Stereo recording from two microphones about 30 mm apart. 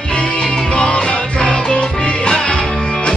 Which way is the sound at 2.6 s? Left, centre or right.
Centre.